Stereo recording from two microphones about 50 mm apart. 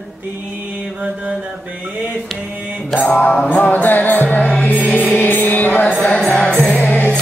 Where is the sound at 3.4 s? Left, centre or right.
Left.